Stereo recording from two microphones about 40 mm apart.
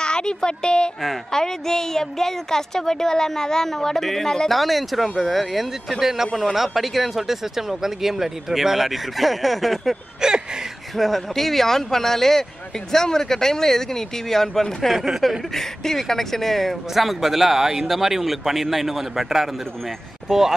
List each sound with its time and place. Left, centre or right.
0.0 s a woman's voice: left; by 9.9 s centre
10.2 s a sound: centre
11.0 s speech: centre
15.0 s speech: centre
15.5 s speech: centre